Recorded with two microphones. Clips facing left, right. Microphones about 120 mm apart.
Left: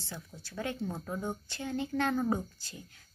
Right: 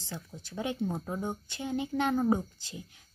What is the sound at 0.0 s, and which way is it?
Speech, 15° right (ahead or behind).